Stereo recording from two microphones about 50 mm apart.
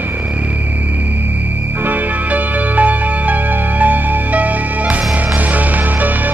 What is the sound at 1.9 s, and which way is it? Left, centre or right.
Music, right.